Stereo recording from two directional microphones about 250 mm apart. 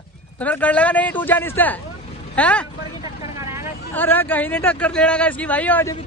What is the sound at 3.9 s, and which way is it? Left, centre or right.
A man's voice, centre.